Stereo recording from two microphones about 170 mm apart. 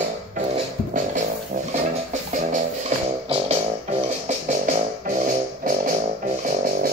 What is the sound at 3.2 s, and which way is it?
Music, 35° right (ahead or behind).